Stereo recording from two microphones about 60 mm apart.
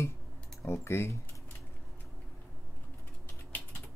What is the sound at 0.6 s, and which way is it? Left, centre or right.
Speech, left.